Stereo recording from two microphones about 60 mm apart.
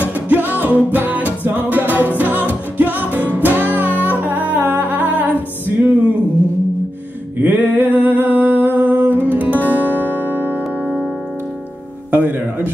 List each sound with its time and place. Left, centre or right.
0.5 s music: right
5.7 s a sound: right
7.4 s music: right
12.1 s music: right